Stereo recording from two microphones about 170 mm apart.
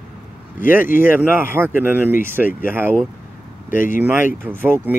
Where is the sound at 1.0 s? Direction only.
10° right (ahead or behind).